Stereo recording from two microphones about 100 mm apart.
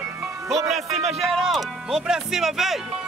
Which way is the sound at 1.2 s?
Centre (ahead or behind).